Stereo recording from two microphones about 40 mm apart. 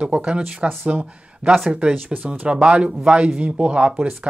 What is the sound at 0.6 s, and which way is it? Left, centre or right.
Speech, right.